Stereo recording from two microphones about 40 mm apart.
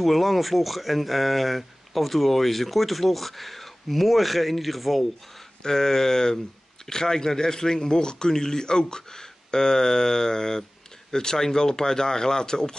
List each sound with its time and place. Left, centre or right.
0.0 s speech: centre
5.6 s a man's voice: centre